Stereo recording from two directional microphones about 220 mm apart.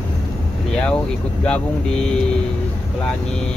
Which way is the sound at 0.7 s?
5° left (ahead or behind).